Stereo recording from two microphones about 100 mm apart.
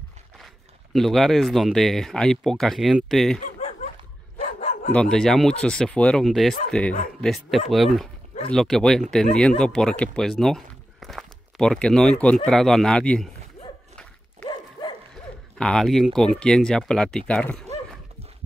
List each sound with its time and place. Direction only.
0.9 s speech: centre (ahead or behind)
4.9 s speech: 5° left (ahead or behind)
7.7 s speech: centre (ahead or behind)
14.5 s dog: 50° left (ahead or behind)
15.5 s speech: 5° left (ahead or behind)